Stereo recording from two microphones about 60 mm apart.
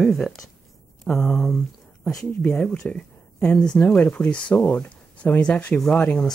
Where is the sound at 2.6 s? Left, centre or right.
Centre.